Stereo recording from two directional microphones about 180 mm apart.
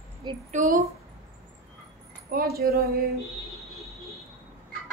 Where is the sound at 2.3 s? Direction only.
55° right (ahead or behind).